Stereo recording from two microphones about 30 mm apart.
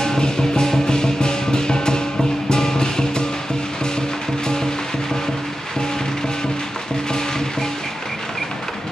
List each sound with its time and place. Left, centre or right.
0.0 s music: left